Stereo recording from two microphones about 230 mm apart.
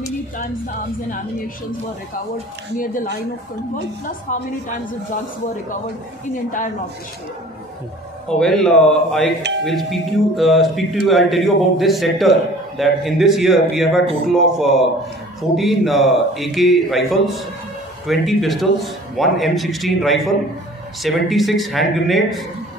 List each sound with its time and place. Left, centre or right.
0.4 s speech: left
2.8 s speech: left
4.3 s speech: left
8.3 s a man's voice: centre